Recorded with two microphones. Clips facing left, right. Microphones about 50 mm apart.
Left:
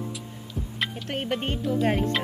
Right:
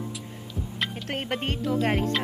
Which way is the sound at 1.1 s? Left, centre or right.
Right.